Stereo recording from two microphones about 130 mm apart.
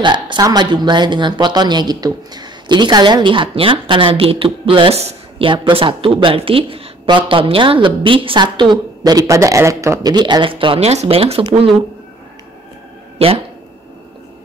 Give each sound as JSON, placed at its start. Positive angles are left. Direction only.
{"t": 0.0, "sound": "speech", "side_deg": -35}
{"t": 13.2, "sound": "speech", "side_deg": -50}